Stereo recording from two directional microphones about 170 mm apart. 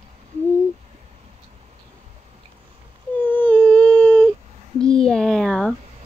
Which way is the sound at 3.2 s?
10° left (ahead or behind).